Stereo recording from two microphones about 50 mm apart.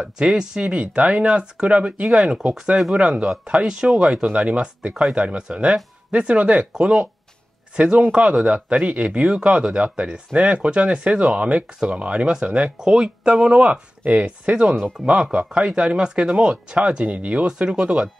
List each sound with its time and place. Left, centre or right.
0.2 s speech: centre
2.0 s speech: centre